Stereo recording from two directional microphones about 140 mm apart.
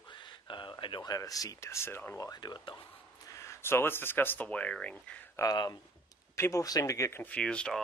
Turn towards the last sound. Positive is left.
turn(degrees=5)  # may be behind; listen again after turning